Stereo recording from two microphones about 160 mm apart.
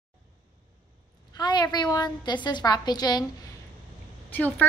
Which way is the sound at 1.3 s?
25° left (ahead or behind).